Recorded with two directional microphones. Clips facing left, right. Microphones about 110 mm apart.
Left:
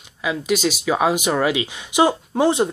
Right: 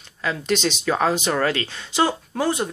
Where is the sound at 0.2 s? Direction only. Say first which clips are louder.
Left 2 dB; 10° left (ahead or behind).